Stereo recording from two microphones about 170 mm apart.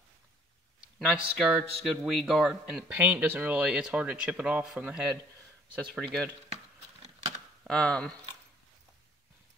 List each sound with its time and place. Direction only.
0.7 s a man's voice: 5° right (ahead or behind)
6.5 s a sound: 40° right (ahead or behind)
7.6 s a man's voice: 5° left (ahead or behind)